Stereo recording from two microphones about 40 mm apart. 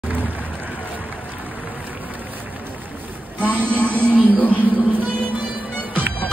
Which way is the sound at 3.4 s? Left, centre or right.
Right.